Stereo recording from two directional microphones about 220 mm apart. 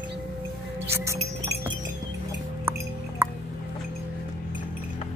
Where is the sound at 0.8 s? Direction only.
10° right (ahead or behind).